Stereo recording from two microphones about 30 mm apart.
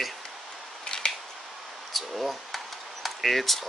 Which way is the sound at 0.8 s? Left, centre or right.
Left.